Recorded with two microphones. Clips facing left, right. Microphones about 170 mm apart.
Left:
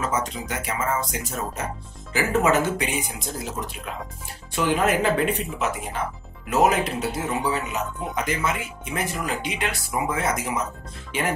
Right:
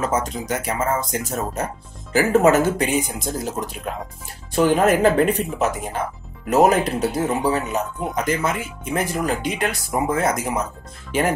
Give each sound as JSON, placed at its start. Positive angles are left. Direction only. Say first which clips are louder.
{"t": 0.1, "sound": "speech", "louder": "right 4 dB", "side_deg": -40}